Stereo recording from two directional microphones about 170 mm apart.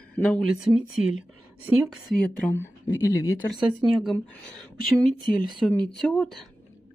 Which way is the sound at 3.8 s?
Centre (ahead or behind).